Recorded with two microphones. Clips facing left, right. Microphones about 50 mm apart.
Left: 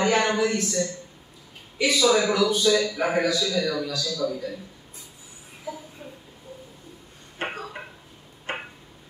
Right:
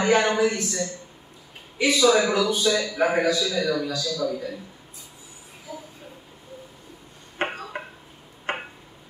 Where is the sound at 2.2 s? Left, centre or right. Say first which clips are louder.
Left 1 dB; right.